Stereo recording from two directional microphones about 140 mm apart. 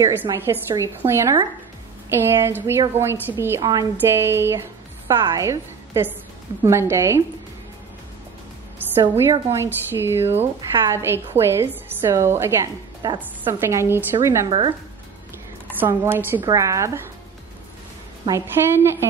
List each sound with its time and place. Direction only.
0.0 s a woman's voice: 15° right (ahead or behind)
9.1 s a woman's voice: 20° right (ahead or behind)
15.8 s a woman's voice: 15° right (ahead or behind)
18.3 s a woman's voice: 15° right (ahead or behind)